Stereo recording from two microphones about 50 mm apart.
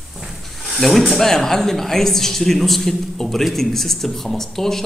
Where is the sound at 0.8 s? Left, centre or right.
Centre.